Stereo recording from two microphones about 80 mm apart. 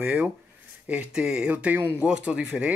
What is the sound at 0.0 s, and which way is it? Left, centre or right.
Speech, centre.